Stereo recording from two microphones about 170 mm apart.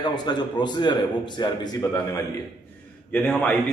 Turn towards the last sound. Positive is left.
turn(degrees=5)  # may be behind; listen again after turning